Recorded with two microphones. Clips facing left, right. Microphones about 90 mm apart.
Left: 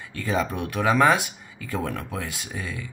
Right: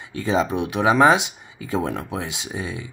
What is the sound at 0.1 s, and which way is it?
Speech, 20° right (ahead or behind).